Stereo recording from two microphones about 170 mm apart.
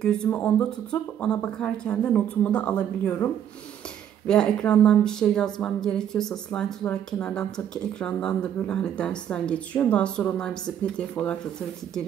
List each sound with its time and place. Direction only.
0.0 s a woman's voice: 5° left (ahead or behind)
4.3 s a woman's voice: 5° left (ahead or behind)